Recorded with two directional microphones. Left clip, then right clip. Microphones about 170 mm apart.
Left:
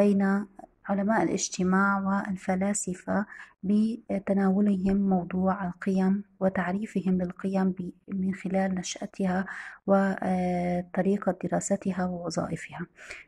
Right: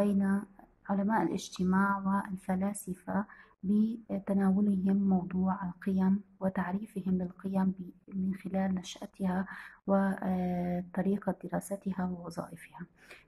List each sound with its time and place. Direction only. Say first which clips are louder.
0.0 s speech: left 7 dB; 35° left (ahead or behind)